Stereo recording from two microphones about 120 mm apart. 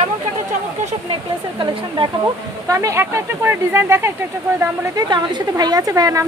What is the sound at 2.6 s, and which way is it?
A woman's voice, 25° right (ahead or behind).